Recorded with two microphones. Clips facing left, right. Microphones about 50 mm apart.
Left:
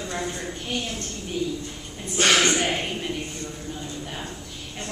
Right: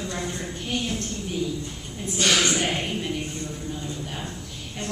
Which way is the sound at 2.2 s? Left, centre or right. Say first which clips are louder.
Left 3 dB; left.